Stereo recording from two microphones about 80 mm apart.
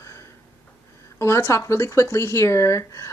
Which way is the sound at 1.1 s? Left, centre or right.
Left.